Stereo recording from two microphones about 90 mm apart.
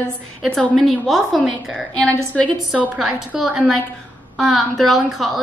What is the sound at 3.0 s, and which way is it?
A woman's voice, 5° right (ahead or behind).